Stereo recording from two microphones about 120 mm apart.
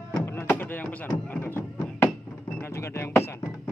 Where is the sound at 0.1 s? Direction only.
20° left (ahead or behind).